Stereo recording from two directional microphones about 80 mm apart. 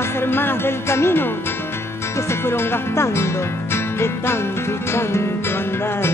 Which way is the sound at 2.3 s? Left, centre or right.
Left.